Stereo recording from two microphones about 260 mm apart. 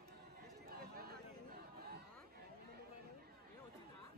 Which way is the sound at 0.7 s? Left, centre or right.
Right.